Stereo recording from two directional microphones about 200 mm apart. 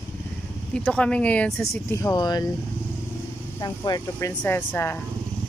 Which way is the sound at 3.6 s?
20° left (ahead or behind).